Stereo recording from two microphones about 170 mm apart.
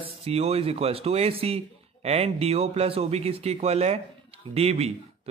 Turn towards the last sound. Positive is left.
turn(degrees=-35)  # may be behind; listen again after turning